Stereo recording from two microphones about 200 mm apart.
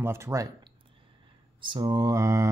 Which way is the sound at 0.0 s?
15° right (ahead or behind).